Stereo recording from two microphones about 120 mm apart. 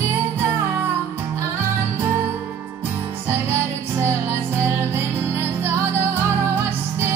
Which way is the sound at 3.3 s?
20° right (ahead or behind).